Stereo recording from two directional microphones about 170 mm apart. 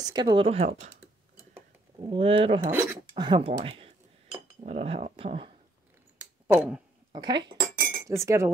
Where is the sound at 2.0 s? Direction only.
30° right (ahead or behind).